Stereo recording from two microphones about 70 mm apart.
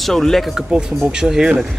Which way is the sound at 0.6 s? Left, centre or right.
Centre.